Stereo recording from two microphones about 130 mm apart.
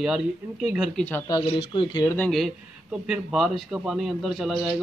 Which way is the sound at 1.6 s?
40° left (ahead or behind).